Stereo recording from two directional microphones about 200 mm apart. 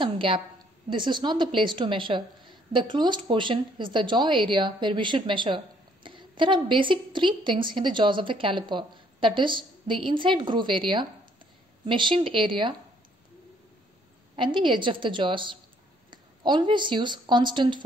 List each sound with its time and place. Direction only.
0.0 s a woman's voice: 25° right (ahead or behind)
14.3 s a woman's voice: 25° right (ahead or behind)